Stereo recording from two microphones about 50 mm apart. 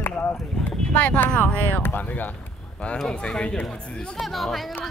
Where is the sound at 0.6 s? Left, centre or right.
Left.